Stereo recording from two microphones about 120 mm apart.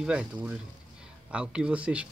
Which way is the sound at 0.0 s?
5° right (ahead or behind).